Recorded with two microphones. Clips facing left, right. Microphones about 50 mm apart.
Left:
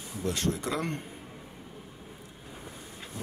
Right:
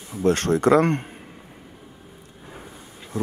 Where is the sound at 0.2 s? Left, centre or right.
Right.